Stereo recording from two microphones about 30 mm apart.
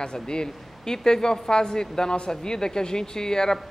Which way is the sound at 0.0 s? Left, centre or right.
Left.